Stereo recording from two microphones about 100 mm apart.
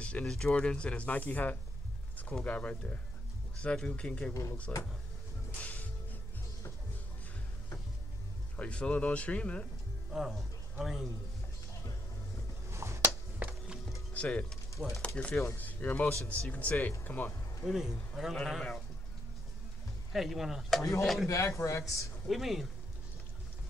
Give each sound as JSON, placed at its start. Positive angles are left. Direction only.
{"t": 0.0, "sound": "speech", "side_deg": 10}
{"t": 4.3, "sound": "speech", "side_deg": 30}
{"t": 5.6, "sound": "music", "side_deg": 15}
{"t": 8.5, "sound": "speech", "side_deg": 10}
{"t": 10.1, "sound": "speech", "side_deg": -5}
{"t": 12.7, "sound": "finger snapping", "side_deg": -25}
{"t": 13.4, "sound": "music", "side_deg": -15}
{"t": 14.1, "sound": "speech", "side_deg": 10}
{"t": 14.8, "sound": "speech", "side_deg": 0}
{"t": 15.1, "sound": "speech", "side_deg": 10}
{"t": 17.6, "sound": "speech", "side_deg": 0}
{"t": 20.1, "sound": "speech", "side_deg": 0}
{"t": 21.3, "sound": "speech", "side_deg": 30}
{"t": 22.3, "sound": "speech", "side_deg": 0}